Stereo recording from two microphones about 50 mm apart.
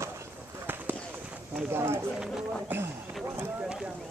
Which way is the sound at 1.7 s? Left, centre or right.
Right.